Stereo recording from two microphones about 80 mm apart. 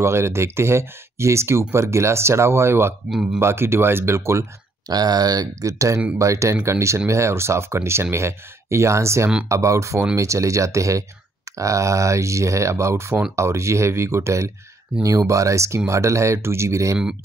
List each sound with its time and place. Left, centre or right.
0.0 s speech: right
4.8 s speech: right